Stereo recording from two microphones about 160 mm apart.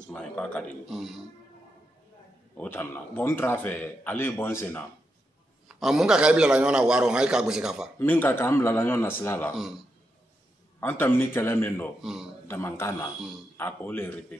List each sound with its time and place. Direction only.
0.1 s a man's voice: 5° left (ahead or behind)
2.5 s a man's voice: 10° left (ahead or behind)
5.7 s a man's voice: centre (ahead or behind)
8.0 s a man's voice: 10° left (ahead or behind)
10.8 s a man's voice: 15° left (ahead or behind)
12.0 s a man's voice: centre (ahead or behind)
12.4 s a man's voice: 15° left (ahead or behind)